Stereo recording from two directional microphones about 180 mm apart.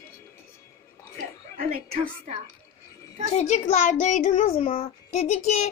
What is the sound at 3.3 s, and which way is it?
A child's voice, 40° left (ahead or behind).